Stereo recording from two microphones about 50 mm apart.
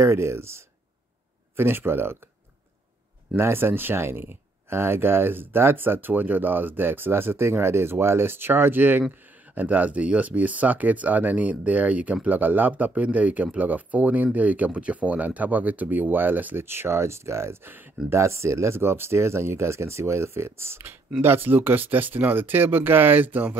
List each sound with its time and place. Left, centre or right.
0.0 s speech: right
1.6 s speech: right
3.3 s speech: right
9.6 s speech: right
16.5 s speech: right
18.8 s speech: right
21.2 s speech: right